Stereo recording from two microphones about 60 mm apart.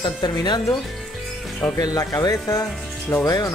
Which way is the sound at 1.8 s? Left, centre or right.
Left.